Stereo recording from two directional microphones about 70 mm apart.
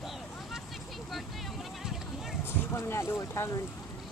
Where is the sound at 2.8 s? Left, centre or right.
Left.